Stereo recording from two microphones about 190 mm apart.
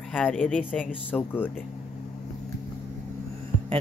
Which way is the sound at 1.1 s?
10° left (ahead or behind).